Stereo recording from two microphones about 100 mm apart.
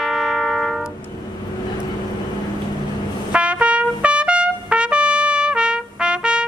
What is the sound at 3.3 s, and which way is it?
Trumpet, 10° right (ahead or behind).